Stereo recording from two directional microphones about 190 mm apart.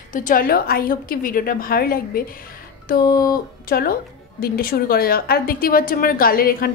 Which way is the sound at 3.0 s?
20° left (ahead or behind).